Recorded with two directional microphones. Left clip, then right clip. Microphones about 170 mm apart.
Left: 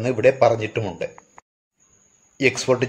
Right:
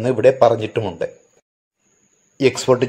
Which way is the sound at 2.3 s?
20° right (ahead or behind).